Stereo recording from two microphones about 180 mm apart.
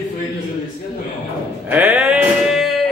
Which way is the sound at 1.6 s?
10° right (ahead or behind).